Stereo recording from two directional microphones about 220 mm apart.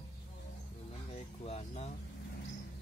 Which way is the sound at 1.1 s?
30° left (ahead or behind).